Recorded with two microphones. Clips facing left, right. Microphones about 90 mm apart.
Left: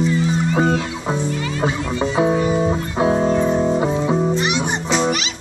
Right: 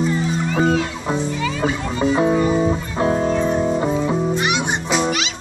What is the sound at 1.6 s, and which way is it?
Speech, 15° left (ahead or behind).